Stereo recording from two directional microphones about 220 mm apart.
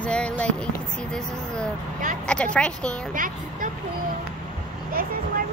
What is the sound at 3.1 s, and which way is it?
Speech, 40° right (ahead or behind).